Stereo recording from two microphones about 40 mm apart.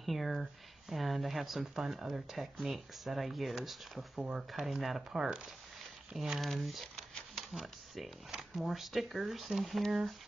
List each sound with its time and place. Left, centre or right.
0.0 s speech: centre
5.1 s speech: centre
8.3 s speech: centre